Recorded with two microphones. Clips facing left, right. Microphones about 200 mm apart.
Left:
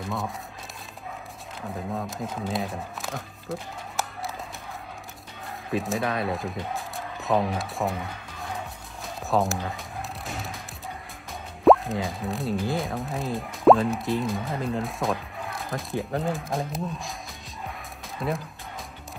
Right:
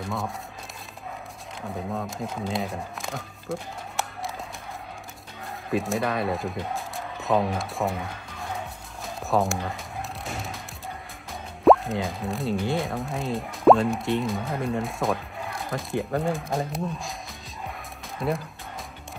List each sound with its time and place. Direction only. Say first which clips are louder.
0.0 s speech: even; centre (ahead or behind)
1.7 s speech: right 1 dB; centre (ahead or behind)
5.7 s speech: right 1 dB; centre (ahead or behind)
9.0 s music: even; centre (ahead or behind)
11.6 s speech: even; centre (ahead or behind)
18.2 s speech: right 2 dB; centre (ahead or behind)